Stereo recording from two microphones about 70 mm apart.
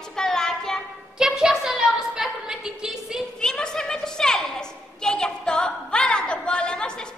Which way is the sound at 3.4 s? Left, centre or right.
Centre.